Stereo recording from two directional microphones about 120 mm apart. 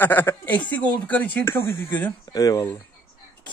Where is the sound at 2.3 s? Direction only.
30° left (ahead or behind).